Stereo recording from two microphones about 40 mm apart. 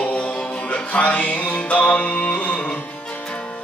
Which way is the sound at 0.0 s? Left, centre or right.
Left.